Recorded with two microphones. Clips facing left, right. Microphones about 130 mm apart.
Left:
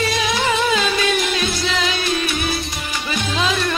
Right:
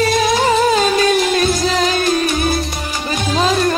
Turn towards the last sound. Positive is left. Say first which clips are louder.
# right 5 dB
turn(degrees=-40)  # may be behind; listen again after turning